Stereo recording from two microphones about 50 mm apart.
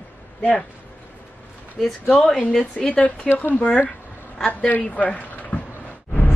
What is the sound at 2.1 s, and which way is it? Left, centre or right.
A woman's voice, centre.